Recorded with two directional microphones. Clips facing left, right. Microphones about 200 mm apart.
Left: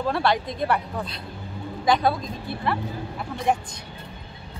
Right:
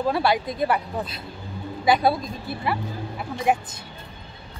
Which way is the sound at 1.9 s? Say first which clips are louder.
Right 2 dB; 10° right (ahead or behind).